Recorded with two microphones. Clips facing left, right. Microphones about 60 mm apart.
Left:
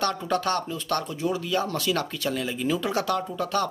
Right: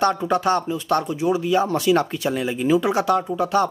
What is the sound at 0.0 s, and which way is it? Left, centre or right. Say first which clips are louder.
Speech: right 6 dB; right.